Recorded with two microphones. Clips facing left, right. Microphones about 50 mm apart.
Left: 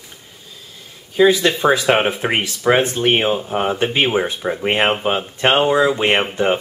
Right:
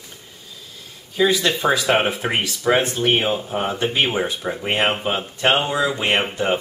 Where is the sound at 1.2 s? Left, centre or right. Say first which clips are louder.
Left 5 dB; centre.